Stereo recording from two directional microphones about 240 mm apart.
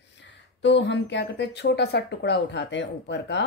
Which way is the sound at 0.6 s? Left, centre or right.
Left.